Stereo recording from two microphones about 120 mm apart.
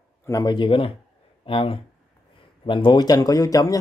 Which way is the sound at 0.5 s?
45° left (ahead or behind).